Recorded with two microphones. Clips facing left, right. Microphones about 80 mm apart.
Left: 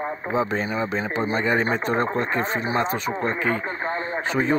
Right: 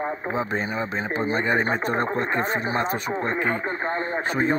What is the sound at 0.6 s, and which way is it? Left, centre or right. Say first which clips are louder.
Speech: left 2 dB; right.